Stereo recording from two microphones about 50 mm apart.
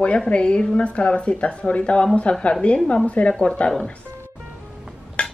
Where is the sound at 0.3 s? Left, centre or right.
Left.